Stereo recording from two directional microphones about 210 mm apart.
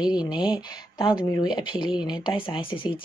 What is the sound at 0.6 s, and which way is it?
Speech, 20° left (ahead or behind).